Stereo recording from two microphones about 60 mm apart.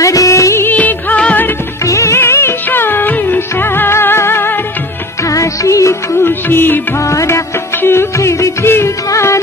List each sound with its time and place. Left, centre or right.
0.0 s music of bollywood: left
0.7 s music of bollywood: left
1.9 s music: left
2.7 s music: left
5.3 s music: left
6.2 s music: left
7.0 s music: left
7.8 s music: left
8.6 s music: left
9.1 s music: left